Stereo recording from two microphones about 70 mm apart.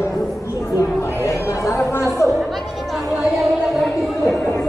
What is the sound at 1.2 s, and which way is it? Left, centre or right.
Chatter, left.